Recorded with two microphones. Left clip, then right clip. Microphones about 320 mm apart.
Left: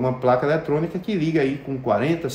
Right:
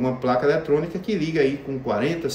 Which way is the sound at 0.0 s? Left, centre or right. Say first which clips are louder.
Left 1 dB; centre.